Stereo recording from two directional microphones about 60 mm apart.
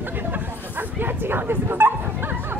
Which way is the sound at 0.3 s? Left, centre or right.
Right.